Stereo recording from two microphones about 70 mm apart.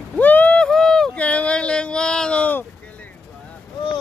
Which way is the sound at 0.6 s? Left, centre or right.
Centre.